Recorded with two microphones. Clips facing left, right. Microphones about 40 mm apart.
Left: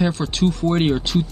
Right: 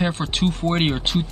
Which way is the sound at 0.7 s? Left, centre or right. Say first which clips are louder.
Left 2 dB; right.